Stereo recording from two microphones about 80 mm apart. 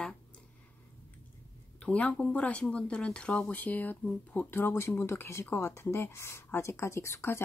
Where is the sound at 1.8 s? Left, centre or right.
Centre.